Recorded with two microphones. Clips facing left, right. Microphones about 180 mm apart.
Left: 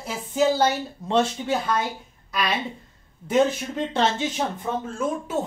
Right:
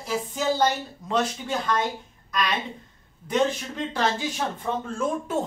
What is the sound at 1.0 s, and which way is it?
Speech, 25° left (ahead or behind).